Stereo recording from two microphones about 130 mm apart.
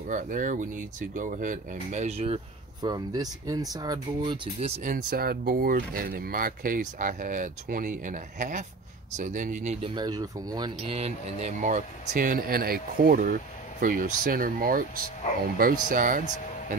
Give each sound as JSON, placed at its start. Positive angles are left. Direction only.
{"t": 0.1, "sound": "speech", "side_deg": -85}
{"t": 2.8, "sound": "speech", "side_deg": -30}
{"t": 4.8, "sound": "speech", "side_deg": -90}
{"t": 9.8, "sound": "speech", "side_deg": -35}
{"t": 10.9, "sound": "speech", "side_deg": -55}